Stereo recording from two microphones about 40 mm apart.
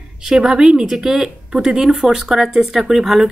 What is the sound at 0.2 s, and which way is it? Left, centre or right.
Speech, centre.